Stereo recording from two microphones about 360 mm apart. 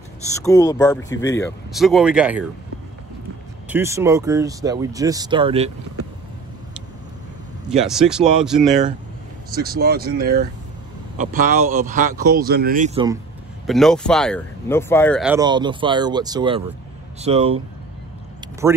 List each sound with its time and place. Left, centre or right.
0.4 s speech: centre
3.6 s speech: centre
7.7 s speech: centre
9.6 s speech: right
13.7 s speech: centre